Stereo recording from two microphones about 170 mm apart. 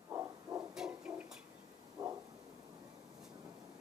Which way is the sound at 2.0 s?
20° right (ahead or behind).